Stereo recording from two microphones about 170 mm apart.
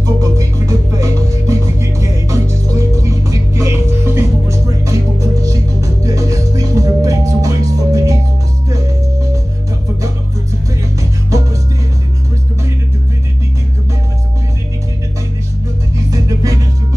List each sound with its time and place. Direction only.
0.0 s music: 20° right (ahead or behind)
11.0 s music: 20° right (ahead or behind)
16.1 s music: 20° right (ahead or behind)